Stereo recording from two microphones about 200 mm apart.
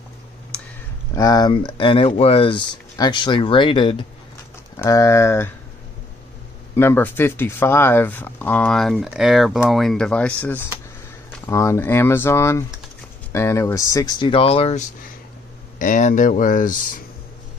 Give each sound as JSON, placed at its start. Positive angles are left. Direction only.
{"t": 1.1, "sound": "speech", "side_deg": 20}
{"t": 4.8, "sound": "speech", "side_deg": 15}
{"t": 6.7, "sound": "speech", "side_deg": 10}